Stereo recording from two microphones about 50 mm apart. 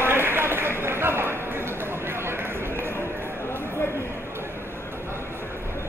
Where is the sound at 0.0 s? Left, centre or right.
Right.